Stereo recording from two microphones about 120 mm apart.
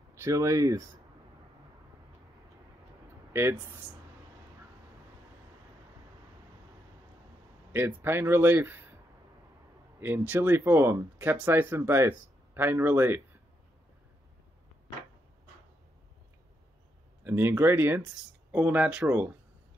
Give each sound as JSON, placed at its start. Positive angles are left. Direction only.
{"t": 0.1, "sound": "speech", "side_deg": -25}
{"t": 7.7, "sound": "speech", "side_deg": -20}
{"t": 9.9, "sound": "speech", "side_deg": -15}
{"t": 17.2, "sound": "speech", "side_deg": -15}